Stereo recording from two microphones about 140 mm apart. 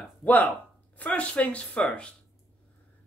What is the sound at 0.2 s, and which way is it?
Speech, 10° left (ahead or behind).